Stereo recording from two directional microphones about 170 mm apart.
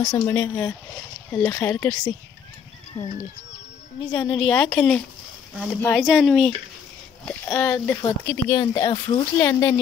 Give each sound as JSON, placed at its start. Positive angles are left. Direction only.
{"t": 0.0, "sound": "a woman's voice", "side_deg": 15}
{"t": 4.2, "sound": "a woman's voice", "side_deg": 5}
{"t": 8.0, "sound": "speech", "side_deg": 20}
{"t": 9.4, "sound": "a woman's voice", "side_deg": 15}